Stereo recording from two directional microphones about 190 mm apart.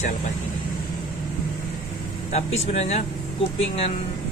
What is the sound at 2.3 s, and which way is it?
Speech, 35° left (ahead or behind).